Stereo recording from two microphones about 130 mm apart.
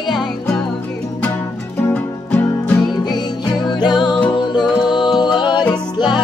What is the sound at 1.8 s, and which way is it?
Music, 15° left (ahead or behind).